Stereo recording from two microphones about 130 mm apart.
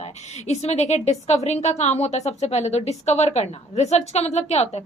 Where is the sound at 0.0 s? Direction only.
55° left (ahead or behind).